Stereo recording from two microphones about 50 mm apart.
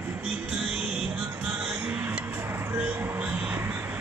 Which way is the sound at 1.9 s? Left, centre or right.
Right.